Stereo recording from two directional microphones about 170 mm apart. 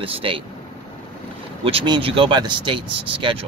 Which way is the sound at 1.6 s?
35° right (ahead or behind).